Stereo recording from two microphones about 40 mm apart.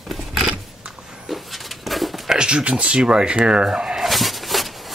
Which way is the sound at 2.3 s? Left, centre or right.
Right.